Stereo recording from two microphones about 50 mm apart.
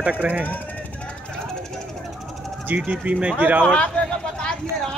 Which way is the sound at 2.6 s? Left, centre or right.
Right.